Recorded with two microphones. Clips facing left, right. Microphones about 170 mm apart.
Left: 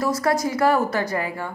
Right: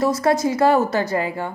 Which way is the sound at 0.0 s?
25° right (ahead or behind).